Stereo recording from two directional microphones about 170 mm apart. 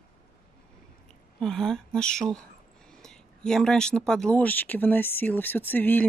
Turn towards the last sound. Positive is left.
turn(degrees=10)  # may be behind; listen again after turning